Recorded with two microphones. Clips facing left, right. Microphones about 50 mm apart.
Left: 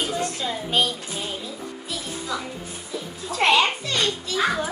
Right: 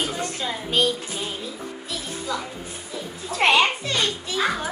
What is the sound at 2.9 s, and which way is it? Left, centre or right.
Music, centre.